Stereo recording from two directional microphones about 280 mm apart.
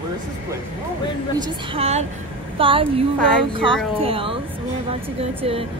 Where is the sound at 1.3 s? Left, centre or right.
Right.